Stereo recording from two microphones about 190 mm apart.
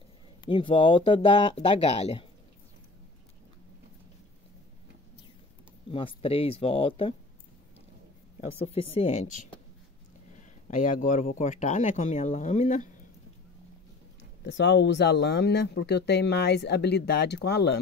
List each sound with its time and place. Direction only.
0.5 s speech: 25° left (ahead or behind)
5.9 s speech: 30° left (ahead or behind)
8.4 s speech: 30° left (ahead or behind)
14.4 s speech: 65° left (ahead or behind)